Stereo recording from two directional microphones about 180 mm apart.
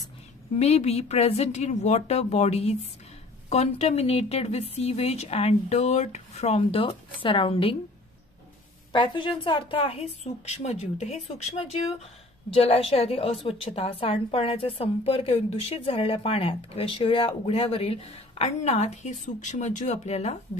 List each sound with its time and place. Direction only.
0.6 s a woman's voice: 35° left (ahead or behind)
8.9 s a woman's voice: 25° left (ahead or behind)